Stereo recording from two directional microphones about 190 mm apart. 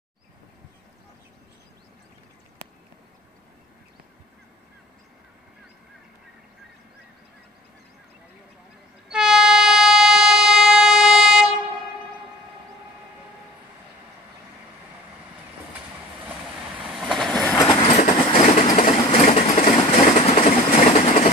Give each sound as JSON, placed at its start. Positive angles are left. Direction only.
{"t": 9.1, "sound": "train", "side_deg": -5}
{"t": 16.8, "sound": "vehicle", "side_deg": 0}
{"t": 17.6, "sound": "train", "side_deg": 25}
{"t": 20.2, "sound": "vehicle", "side_deg": 35}